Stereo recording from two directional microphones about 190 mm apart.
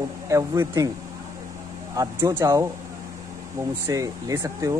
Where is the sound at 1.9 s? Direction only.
15° right (ahead or behind).